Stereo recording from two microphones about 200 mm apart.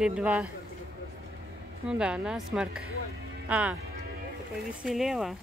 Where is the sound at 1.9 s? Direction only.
5° right (ahead or behind).